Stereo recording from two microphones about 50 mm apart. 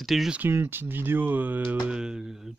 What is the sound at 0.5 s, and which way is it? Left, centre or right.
Speech, right.